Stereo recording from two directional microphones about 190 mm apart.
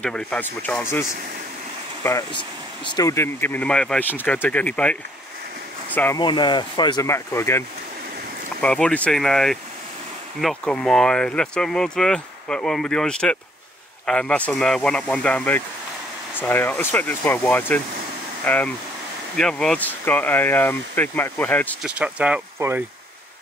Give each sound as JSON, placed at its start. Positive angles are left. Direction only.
{"t": 0.0, "sound": "speech", "side_deg": 5}
{"t": 2.0, "sound": "speech", "side_deg": 20}
{"t": 5.9, "sound": "speech", "side_deg": 10}
{"t": 6.2, "sound": "speech", "side_deg": 25}
{"t": 21.8, "sound": "speech", "side_deg": -5}